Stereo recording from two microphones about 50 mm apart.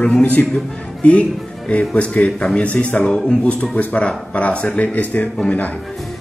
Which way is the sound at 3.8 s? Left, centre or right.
Left.